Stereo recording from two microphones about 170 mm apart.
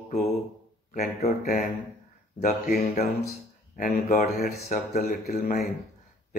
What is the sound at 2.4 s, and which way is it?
Mantra, 50° left (ahead or behind).